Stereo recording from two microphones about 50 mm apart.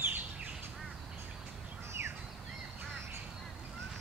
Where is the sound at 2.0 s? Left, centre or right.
Right.